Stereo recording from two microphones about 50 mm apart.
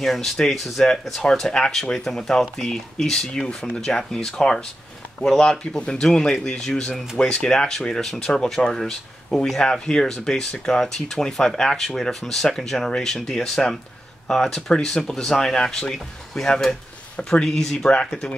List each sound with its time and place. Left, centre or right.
0.0 s speech: centre